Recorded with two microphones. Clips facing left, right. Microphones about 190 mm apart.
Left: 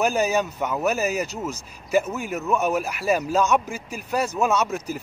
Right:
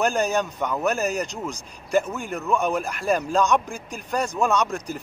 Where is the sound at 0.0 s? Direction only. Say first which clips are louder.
Left 1 dB; 5° left (ahead or behind).